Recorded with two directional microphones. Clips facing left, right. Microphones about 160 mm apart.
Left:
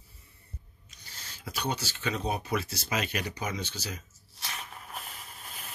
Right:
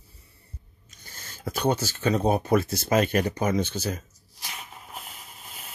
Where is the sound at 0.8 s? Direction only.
50° right (ahead or behind).